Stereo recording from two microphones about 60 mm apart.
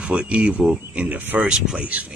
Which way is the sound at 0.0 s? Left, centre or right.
Centre.